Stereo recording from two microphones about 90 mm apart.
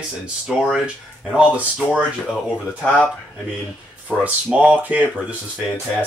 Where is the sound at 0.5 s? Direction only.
5° right (ahead or behind).